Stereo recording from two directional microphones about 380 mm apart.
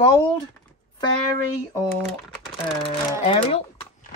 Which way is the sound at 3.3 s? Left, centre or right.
Centre.